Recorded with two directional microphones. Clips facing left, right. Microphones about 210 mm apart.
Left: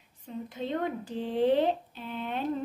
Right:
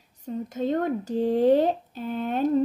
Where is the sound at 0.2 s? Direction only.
45° right (ahead or behind).